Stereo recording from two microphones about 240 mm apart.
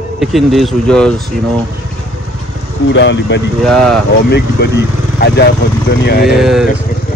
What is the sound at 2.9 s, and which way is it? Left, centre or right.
Speech, left.